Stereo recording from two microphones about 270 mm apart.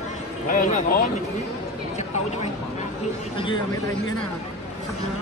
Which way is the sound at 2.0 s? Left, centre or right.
Left.